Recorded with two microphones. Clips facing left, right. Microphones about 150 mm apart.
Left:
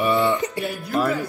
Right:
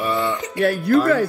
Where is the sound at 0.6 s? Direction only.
90° right.